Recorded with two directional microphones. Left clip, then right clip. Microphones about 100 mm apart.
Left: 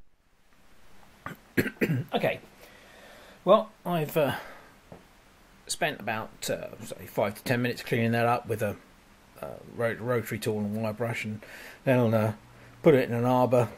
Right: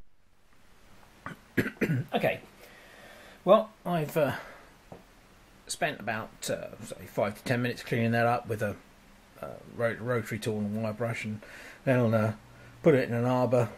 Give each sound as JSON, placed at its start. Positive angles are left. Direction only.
{"t": 1.2, "sound": "cough", "side_deg": 25}
{"t": 3.4, "sound": "speech", "side_deg": 15}
{"t": 5.7, "sound": "speech", "side_deg": 25}